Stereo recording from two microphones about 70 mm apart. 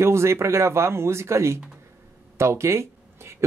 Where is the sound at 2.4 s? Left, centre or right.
Right.